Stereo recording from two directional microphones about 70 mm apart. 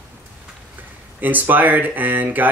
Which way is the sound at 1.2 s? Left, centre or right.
Right.